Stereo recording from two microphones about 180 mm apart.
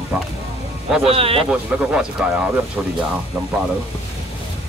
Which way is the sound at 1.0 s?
30° right (ahead or behind).